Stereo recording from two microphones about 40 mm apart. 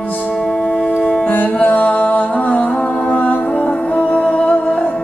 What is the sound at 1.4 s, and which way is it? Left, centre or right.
Music, left.